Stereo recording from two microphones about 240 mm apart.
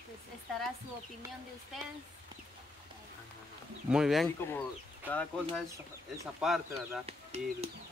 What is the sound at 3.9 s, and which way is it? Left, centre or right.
Speech, centre.